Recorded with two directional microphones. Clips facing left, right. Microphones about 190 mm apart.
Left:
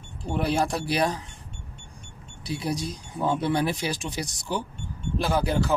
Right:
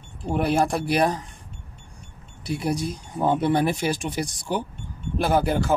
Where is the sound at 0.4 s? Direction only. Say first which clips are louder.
Right 3 dB; 50° right (ahead or behind).